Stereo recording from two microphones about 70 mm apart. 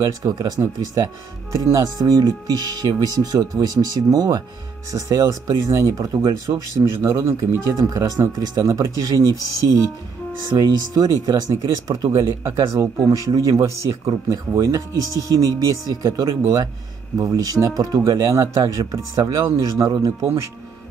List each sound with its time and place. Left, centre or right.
0.0 s speech: right
10.6 s speech: right
12.1 s speech: right